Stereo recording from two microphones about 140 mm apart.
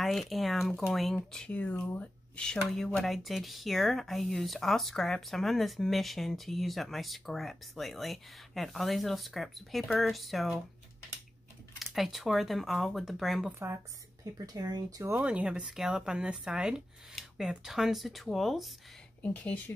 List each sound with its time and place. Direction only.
0.0 s speech: centre (ahead or behind)
11.8 s speech: centre (ahead or behind)
14.4 s speech: 25° right (ahead or behind)
15.1 s speech: 10° right (ahead or behind); by 19.6 s 10° left (ahead or behind)